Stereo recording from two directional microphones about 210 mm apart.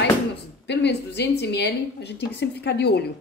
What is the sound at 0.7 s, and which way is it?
A woman's voice, 55° left (ahead or behind).